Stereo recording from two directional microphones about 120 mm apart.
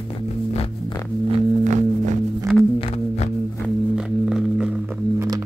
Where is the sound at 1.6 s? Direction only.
80° right.